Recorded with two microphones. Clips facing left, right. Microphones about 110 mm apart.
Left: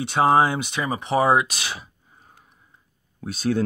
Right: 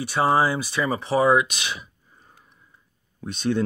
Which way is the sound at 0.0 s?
20° left (ahead or behind).